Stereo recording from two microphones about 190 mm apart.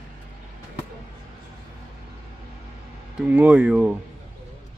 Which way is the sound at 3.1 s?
10° right (ahead or behind).